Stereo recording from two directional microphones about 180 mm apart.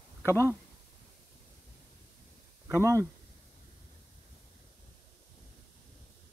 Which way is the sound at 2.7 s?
15° right (ahead or behind).